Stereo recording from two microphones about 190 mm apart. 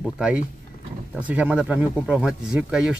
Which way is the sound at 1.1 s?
5° right (ahead or behind).